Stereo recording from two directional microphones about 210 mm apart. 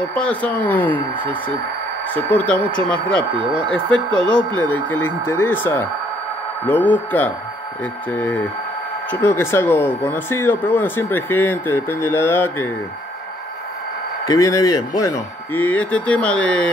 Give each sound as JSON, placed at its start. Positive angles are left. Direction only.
{"t": 0.1, "sound": "speech", "side_deg": 5}
{"t": 14.2, "sound": "speech", "side_deg": 15}